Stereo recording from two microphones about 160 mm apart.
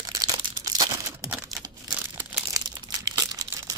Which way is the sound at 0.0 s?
25° right (ahead or behind).